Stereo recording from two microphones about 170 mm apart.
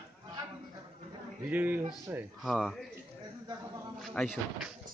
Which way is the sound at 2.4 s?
Centre (ahead or behind).